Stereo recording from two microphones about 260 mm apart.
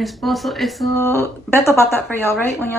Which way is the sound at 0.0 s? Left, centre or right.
Centre.